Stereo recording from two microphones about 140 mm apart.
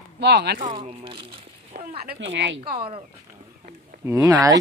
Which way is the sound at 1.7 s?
90° right.